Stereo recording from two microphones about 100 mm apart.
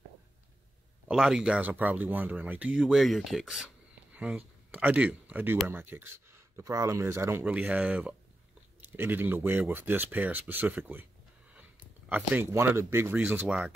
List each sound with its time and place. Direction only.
1.0 s speech: 5° right (ahead or behind); by 7.4 s 25° right (ahead or behind)
7.4 s speech: 15° right (ahead or behind)
12.4 s speech: 25° right (ahead or behind)